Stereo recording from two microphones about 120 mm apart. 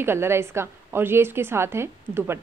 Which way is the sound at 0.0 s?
20° right (ahead or behind).